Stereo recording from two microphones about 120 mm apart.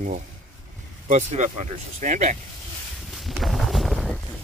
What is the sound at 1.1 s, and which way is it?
Speech, 75° right (ahead or behind).